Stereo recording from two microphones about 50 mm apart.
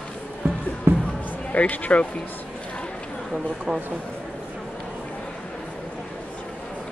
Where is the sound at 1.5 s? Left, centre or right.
Left.